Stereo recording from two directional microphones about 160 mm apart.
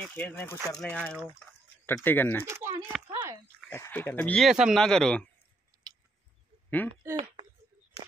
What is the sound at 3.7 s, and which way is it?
Speech, 15° left (ahead or behind).